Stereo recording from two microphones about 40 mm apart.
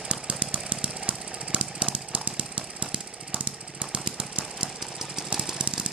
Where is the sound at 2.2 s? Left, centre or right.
Right.